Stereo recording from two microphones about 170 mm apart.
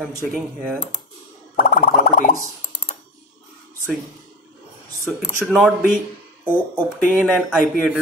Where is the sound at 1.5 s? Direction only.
50° left (ahead or behind).